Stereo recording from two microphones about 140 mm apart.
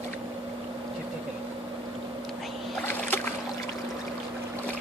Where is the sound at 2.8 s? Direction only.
15° left (ahead or behind).